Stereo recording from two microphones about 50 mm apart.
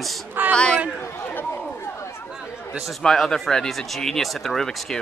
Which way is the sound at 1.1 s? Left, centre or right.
Left.